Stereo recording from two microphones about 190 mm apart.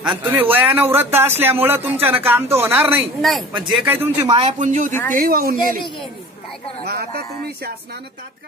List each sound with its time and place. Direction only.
0.1 s speech: 10° right (ahead or behind)
3.2 s speech: centre (ahead or behind)
4.3 s speech: 35° right (ahead or behind); by 5.8 s 50° right (ahead or behind)
6.8 s speech: 55° right (ahead or behind)